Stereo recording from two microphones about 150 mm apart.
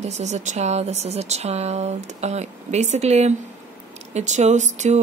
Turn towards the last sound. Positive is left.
turn(degrees=-50)  # may be behind; listen again after turning